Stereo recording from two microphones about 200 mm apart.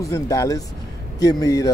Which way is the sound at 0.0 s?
15° left (ahead or behind).